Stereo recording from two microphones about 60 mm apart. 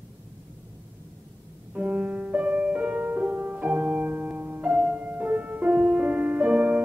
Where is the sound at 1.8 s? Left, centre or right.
Right.